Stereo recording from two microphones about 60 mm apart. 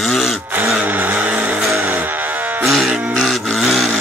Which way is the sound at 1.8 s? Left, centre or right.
Right.